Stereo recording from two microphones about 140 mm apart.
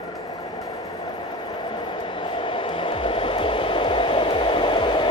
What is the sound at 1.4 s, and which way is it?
Vehicle, 35° left (ahead or behind).